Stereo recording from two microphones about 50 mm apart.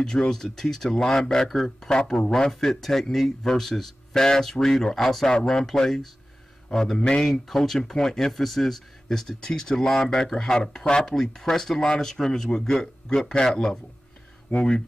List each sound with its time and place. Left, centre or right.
0.3 s speech: centre